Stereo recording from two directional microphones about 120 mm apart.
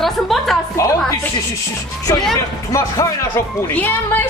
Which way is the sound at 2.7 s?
25° left (ahead or behind).